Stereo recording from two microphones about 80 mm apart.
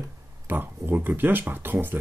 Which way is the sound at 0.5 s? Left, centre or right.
Right.